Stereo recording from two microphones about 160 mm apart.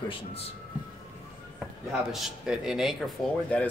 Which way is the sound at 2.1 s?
Centre (ahead or behind).